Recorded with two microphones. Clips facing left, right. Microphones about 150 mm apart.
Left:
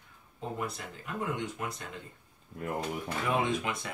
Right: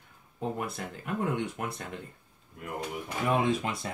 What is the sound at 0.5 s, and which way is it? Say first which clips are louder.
Speech: right 2 dB; 55° right (ahead or behind).